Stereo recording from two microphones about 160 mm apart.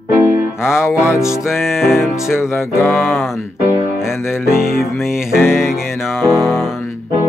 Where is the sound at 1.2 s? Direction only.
5° right (ahead or behind).